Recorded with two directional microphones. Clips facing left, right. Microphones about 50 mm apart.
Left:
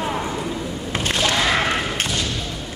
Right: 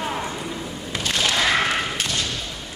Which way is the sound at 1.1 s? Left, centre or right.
Centre.